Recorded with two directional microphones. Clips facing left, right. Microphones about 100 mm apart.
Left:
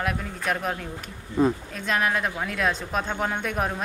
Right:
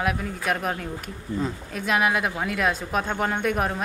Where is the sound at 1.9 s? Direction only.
5° right (ahead or behind).